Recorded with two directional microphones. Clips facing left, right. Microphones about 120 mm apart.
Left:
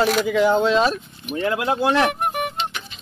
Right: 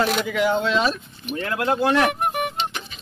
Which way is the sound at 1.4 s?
25° left (ahead or behind).